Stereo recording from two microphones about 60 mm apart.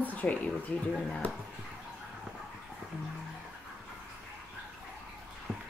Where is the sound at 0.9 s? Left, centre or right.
Centre.